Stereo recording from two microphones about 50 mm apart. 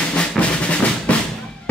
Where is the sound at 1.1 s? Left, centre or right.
Left.